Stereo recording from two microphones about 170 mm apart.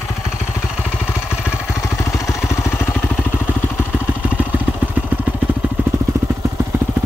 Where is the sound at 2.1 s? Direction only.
15° left (ahead or behind).